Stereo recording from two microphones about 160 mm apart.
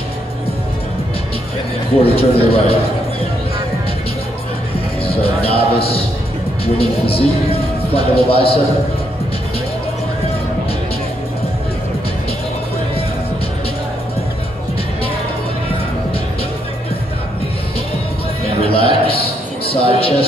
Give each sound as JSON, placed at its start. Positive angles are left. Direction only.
{"t": 2.0, "sound": "speech", "side_deg": 35}
{"t": 5.0, "sound": "music", "side_deg": 35}
{"t": 6.6, "sound": "speech", "side_deg": 35}
{"t": 18.7, "sound": "a man's voice", "side_deg": 35}